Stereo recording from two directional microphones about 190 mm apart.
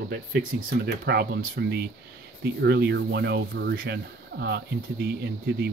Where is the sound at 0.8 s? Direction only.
60° right (ahead or behind).